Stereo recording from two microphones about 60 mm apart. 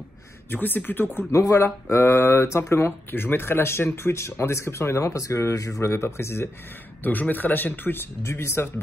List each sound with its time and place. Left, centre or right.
0.5 s a man's voice: left
1.3 s speech: left
1.6 s speech: left
3.1 s speech: left
7.0 s a man's voice: left